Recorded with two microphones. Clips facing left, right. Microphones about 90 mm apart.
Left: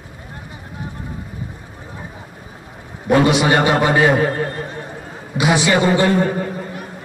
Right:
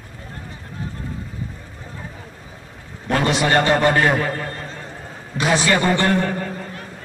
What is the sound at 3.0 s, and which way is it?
A man's voice, 15° left (ahead or behind).